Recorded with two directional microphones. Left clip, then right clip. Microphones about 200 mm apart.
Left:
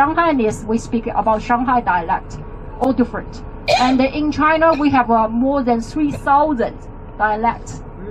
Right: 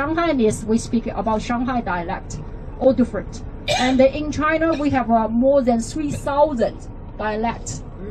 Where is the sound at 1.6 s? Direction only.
50° right (ahead or behind).